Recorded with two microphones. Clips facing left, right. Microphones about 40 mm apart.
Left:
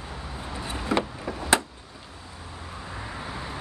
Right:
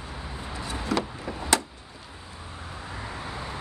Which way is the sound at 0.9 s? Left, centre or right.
Left.